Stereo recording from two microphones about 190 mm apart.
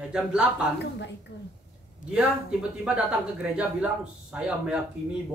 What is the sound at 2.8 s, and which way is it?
Speech, 5° right (ahead or behind).